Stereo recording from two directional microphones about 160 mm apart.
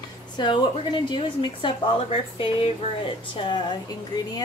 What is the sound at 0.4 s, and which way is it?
A woman's voice, 25° left (ahead or behind).